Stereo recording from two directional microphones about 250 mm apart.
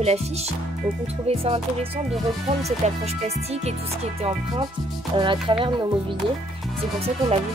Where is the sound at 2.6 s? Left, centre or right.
Right.